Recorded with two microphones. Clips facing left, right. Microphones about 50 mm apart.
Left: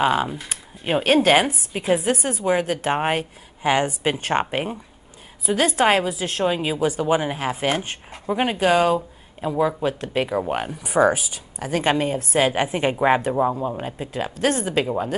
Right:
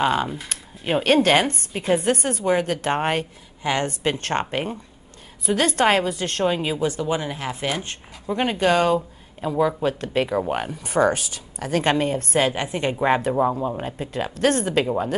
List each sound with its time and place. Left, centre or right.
0.0 s speech: centre
6.8 s speech: centre
8.3 s speech: centre
12.5 s speech: centre
13.2 s speech: centre